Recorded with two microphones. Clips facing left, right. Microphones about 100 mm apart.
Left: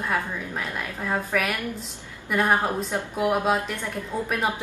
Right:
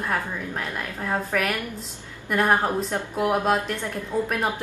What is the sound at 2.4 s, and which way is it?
Speech, 10° right (ahead or behind).